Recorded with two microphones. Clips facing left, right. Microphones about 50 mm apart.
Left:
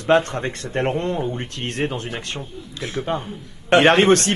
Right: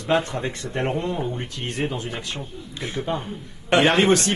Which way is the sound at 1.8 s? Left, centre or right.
Left.